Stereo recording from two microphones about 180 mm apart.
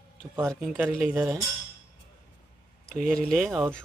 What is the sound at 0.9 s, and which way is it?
Speech, centre (ahead or behind).